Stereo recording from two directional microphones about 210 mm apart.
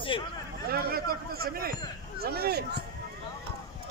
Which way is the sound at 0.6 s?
45° right (ahead or behind).